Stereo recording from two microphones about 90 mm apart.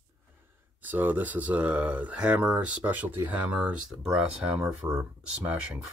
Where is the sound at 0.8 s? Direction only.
20° right (ahead or behind).